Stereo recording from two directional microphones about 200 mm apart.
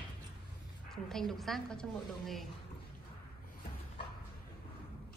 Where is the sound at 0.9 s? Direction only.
Centre (ahead or behind).